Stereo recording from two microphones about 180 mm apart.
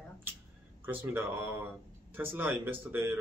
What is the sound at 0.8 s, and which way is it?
Speech, 10° right (ahead or behind).